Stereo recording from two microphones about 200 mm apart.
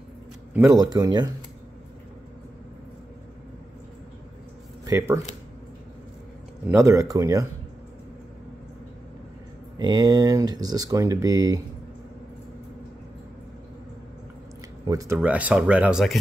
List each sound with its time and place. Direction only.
0.5 s speech: 15° right (ahead or behind)
4.8 s speech: 15° right (ahead or behind)
6.7 s speech: 15° right (ahead or behind)
9.8 s speech: 20° right (ahead or behind)
14.9 s speech: 15° right (ahead or behind)